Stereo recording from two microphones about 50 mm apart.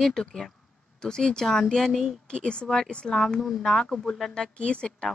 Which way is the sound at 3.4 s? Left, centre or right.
Centre.